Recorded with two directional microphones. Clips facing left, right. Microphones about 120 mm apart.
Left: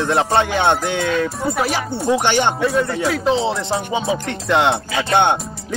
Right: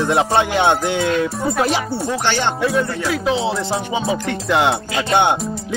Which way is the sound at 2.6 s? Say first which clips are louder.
Left 1 dB; centre (ahead or behind).